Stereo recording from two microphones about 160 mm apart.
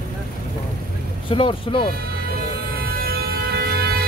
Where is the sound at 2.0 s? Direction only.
70° right (ahead or behind).